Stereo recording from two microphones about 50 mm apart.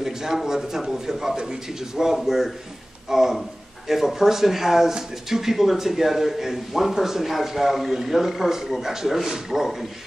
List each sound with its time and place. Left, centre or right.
0.0 s speech: centre